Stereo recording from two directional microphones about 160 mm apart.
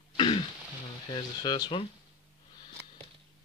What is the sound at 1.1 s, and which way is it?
Speech, 30° left (ahead or behind).